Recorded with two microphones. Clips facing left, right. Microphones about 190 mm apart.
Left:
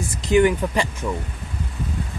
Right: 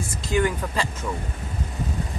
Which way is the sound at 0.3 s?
20° left (ahead or behind).